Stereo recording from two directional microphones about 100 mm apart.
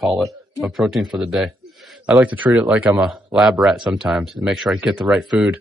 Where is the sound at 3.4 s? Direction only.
5° right (ahead or behind).